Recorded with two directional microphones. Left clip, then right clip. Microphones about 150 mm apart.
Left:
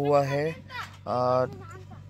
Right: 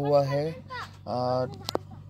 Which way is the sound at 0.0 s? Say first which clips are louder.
Even; 10° left (ahead or behind).